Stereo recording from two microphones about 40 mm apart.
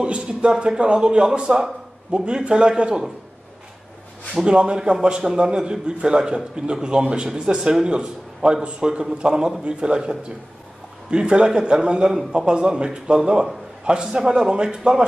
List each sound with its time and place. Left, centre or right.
0.0 s a man's voice: right
4.5 s a man's voice: right